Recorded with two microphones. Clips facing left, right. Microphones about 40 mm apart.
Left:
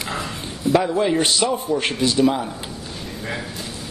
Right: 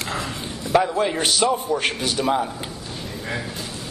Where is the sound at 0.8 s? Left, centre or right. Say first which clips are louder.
Left 1 dB; right.